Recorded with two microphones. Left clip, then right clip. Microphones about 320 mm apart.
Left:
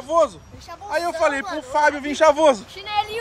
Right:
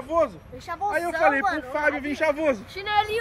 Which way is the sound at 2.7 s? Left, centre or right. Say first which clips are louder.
Right 1 dB; centre.